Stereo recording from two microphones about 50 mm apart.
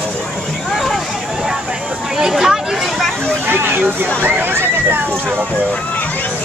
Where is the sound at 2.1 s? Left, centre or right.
Centre.